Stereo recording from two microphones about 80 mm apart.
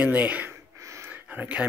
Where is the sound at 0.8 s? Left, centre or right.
Right.